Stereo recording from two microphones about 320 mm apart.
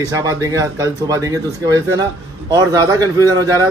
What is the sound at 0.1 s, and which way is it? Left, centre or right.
A man's voice, centre.